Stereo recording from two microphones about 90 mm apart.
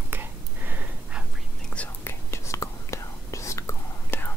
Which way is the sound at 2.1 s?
30° left (ahead or behind).